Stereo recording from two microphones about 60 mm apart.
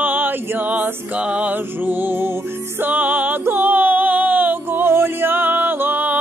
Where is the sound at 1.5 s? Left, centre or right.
Right.